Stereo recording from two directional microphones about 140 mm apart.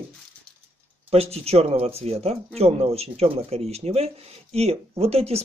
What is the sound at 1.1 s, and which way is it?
Speech, 45° right (ahead or behind).